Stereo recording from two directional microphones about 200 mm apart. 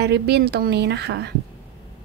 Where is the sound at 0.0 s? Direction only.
55° right (ahead or behind).